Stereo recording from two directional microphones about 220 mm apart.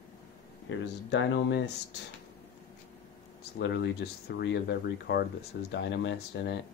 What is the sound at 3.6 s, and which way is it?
Speech, 50° left (ahead or behind).